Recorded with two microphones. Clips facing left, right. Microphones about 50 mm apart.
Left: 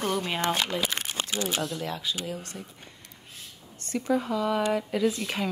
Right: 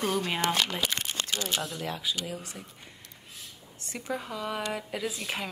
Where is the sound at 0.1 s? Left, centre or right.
Centre.